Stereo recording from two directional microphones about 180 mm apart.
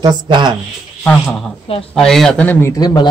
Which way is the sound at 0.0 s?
25° right (ahead or behind).